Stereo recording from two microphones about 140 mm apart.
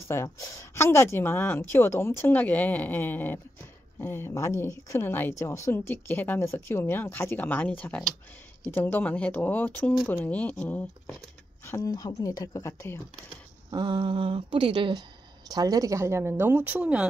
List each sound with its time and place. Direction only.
0.1 s speech: 20° left (ahead or behind)
13.7 s speech: 30° right (ahead or behind); by 17.0 s 10° right (ahead or behind)